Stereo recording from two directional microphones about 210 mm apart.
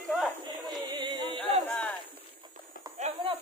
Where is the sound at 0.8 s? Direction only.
20° right (ahead or behind).